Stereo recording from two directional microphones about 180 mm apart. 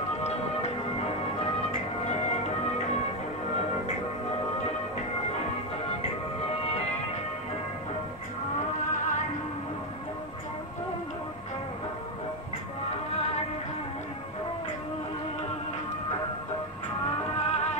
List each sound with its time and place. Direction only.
0.2 s music: 35° left (ahead or behind)
6.4 s music: 35° left (ahead or behind)
8.9 s music: 45° left (ahead or behind)
17.5 s music: 40° left (ahead or behind)